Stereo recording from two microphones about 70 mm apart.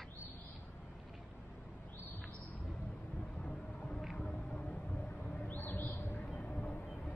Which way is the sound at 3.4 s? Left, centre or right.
Centre.